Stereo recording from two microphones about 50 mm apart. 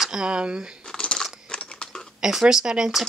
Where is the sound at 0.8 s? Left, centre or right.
Centre.